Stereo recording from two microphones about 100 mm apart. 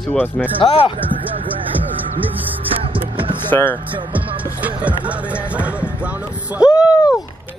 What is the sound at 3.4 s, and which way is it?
Speech, 20° left (ahead or behind).